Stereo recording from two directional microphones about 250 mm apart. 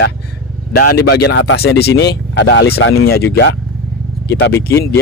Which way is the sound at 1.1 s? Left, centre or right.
Left.